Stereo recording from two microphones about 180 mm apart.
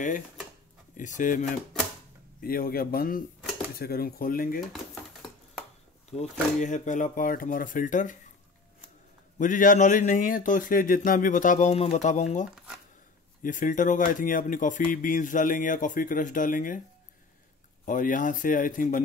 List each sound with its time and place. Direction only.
0.9 s speech: 45° left (ahead or behind)
2.4 s speech: 55° left (ahead or behind)
6.1 s speech: 35° left (ahead or behind)
9.4 s speech: 50° left (ahead or behind)
17.8 s speech: 45° left (ahead or behind)